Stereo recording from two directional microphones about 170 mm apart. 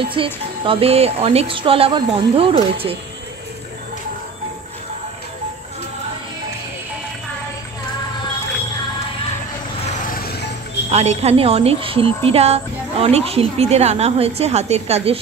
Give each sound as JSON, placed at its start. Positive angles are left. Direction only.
{"t": 0.1, "sound": "speech", "side_deg": -30}
{"t": 10.1, "sound": "music", "side_deg": 65}
{"t": 10.9, "sound": "speech", "side_deg": -40}